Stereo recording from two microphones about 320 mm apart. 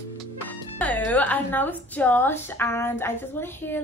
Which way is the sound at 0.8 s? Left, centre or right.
Centre.